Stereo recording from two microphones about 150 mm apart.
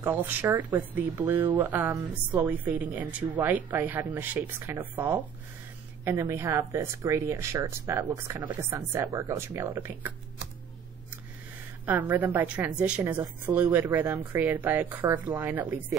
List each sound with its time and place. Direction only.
0.0 s a woman's voice: 15° right (ahead or behind)
11.8 s a woman's voice: 10° right (ahead or behind)